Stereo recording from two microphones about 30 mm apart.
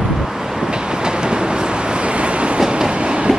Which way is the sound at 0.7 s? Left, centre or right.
Right.